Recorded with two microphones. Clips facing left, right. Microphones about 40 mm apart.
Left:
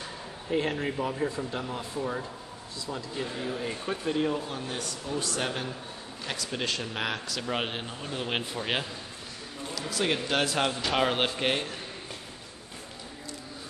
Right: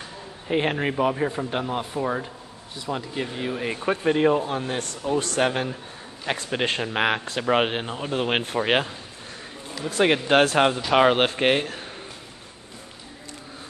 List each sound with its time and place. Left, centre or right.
0.5 s speech: right
1.5 s speech: right
10.8 s speech: right